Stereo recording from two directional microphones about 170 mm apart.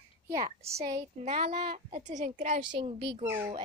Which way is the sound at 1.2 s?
40° right (ahead or behind).